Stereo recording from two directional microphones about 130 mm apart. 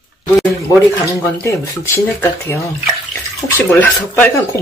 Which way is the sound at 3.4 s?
15° left (ahead or behind).